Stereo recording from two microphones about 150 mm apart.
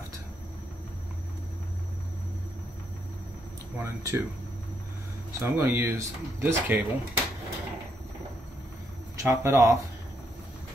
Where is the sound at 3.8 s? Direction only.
20° right (ahead or behind).